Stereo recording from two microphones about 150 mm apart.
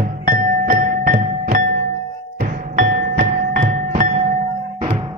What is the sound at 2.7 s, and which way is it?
Music, 55° right (ahead or behind).